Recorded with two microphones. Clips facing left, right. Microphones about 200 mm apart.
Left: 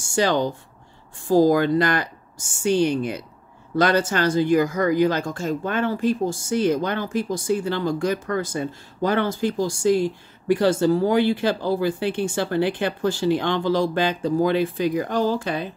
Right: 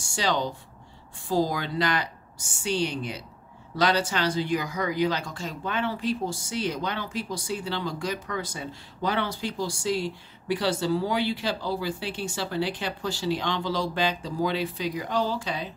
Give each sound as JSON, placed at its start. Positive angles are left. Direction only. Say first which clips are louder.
{"t": 0.1, "sound": "speech", "louder": "left 7 dB", "side_deg": 50}